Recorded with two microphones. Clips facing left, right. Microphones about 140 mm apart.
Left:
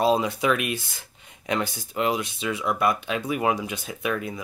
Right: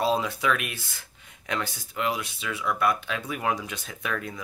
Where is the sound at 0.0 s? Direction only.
20° left (ahead or behind).